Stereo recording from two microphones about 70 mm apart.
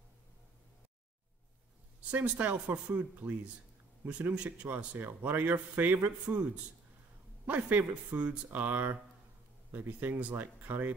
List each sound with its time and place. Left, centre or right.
2.0 s a man's voice: right
7.4 s a man's voice: right